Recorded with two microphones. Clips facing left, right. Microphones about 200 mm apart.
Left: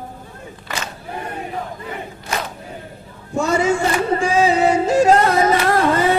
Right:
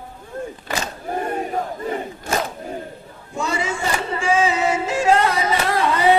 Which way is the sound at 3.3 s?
45° left (ahead or behind).